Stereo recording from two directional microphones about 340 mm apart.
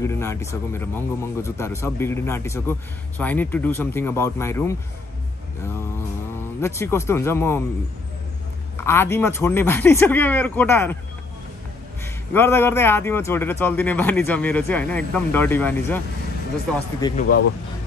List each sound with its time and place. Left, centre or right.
0.0 s a man's voice: centre
6.6 s a man's voice: centre
8.7 s a man's voice: centre
12.0 s a man's voice: centre
17.0 s a man's voice: centre